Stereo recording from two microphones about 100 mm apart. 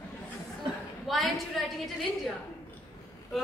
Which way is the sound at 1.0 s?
Centre (ahead or behind).